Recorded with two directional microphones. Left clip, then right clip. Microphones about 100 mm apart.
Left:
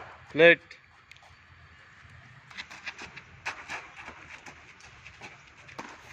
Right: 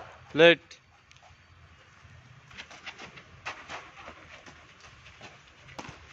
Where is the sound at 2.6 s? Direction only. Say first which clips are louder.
Left 3 dB; 20° left (ahead or behind); by 4.5 s centre (ahead or behind).